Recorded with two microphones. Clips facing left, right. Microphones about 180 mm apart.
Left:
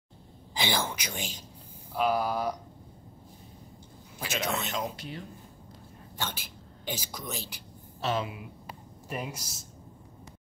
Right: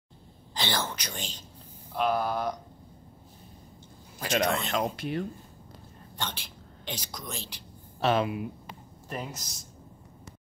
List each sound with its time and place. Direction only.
0.6 s speech: 10° left (ahead or behind)
4.2 s a man's voice: 50° right (ahead or behind)
6.1 s a woman's voice: 5° left (ahead or behind)
8.0 s speech: 60° right (ahead or behind)
9.1 s speech: 10° left (ahead or behind)